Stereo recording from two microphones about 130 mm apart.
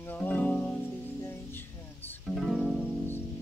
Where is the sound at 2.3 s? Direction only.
Centre (ahead or behind).